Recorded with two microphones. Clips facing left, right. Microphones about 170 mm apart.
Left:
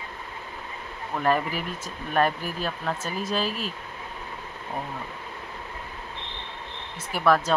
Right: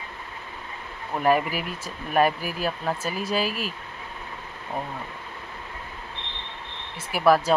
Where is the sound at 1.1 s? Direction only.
10° right (ahead or behind).